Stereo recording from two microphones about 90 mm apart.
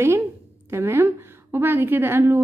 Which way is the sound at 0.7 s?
30° right (ahead or behind).